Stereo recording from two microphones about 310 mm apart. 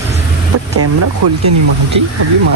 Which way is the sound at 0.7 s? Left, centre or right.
Right.